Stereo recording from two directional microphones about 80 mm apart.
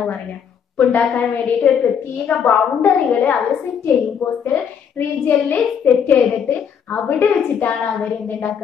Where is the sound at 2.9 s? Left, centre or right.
Centre.